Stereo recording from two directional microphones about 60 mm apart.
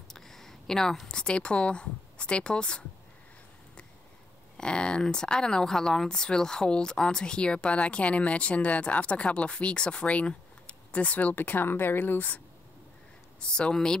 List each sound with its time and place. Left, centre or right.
0.1 s a woman's voice: centre
4.6 s speech: centre; by 12.4 s left
13.4 s speech: centre